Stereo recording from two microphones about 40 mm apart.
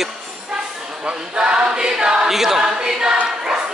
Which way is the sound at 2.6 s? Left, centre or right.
Right.